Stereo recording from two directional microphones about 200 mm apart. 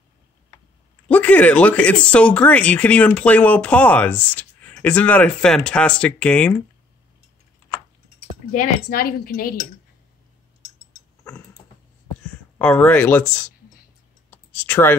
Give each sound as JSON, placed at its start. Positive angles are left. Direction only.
{"t": 1.0, "sound": "speech", "side_deg": 5}
{"t": 8.5, "sound": "a woman's voice", "side_deg": 40}
{"t": 12.5, "sound": "speech", "side_deg": 5}
{"t": 14.7, "sound": "speech", "side_deg": 10}